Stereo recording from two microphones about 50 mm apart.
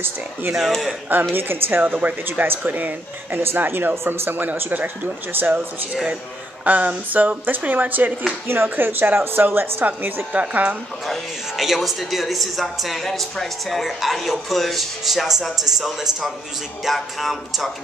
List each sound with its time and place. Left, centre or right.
0.6 s speech: centre
1.3 s speech: right
1.8 s speech: right
2.2 s speech: right
3.9 s speech: right
6.6 s speech: right
11.1 s speech: centre